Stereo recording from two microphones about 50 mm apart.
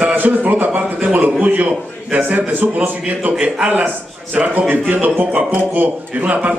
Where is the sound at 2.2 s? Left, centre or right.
Right.